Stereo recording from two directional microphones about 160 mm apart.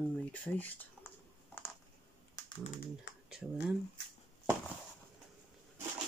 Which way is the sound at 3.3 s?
5° right (ahead or behind).